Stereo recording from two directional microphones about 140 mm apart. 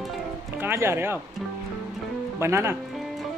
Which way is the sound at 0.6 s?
15° right (ahead or behind).